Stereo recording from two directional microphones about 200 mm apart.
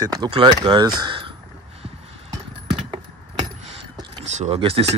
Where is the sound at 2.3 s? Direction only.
25° right (ahead or behind).